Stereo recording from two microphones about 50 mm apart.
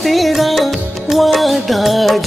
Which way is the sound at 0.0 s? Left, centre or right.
Centre.